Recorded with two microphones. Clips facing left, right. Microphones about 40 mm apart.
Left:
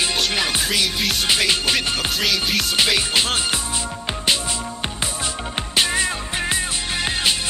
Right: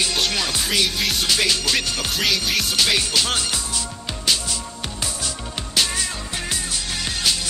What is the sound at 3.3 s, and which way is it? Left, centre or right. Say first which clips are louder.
Music: left 2 dB; left.